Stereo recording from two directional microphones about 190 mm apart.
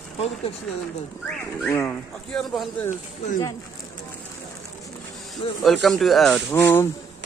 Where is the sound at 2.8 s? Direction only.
40° left (ahead or behind).